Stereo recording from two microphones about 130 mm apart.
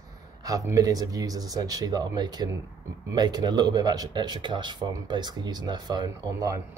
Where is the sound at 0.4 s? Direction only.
30° right (ahead or behind).